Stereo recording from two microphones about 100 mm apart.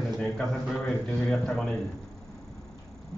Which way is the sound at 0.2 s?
5° left (ahead or behind).